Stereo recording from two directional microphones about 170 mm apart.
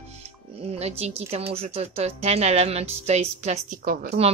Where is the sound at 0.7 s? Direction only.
40° right (ahead or behind); by 4.1 s 55° right (ahead or behind).